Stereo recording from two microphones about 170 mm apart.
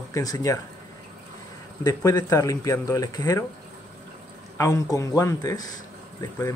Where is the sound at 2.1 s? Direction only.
20° left (ahead or behind).